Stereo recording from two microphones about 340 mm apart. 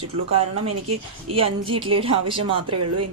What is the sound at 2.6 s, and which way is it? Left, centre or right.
Speech, right.